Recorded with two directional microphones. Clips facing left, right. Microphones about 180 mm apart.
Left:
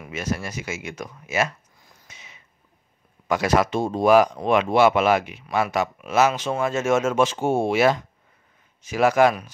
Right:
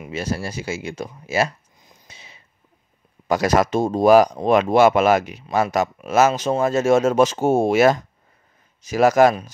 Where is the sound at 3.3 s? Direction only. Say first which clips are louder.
Right 3 dB; 40° right (ahead or behind).